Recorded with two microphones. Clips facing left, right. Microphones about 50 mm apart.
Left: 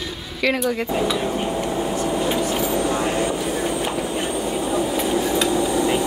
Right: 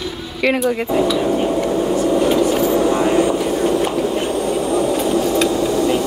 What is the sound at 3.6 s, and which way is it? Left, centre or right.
Vehicle, right.